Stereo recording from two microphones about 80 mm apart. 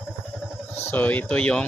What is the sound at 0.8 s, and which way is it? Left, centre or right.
Speech, left.